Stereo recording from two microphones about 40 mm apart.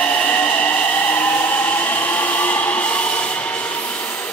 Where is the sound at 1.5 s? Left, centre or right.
Left.